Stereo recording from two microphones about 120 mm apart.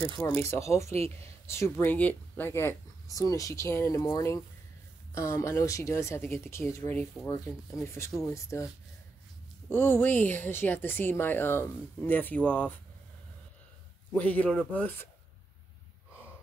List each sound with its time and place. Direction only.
0.3 s speech: 20° left (ahead or behind)
9.7 s a woman's voice: 20° left (ahead or behind)
14.1 s a woman's voice: 10° left (ahead or behind)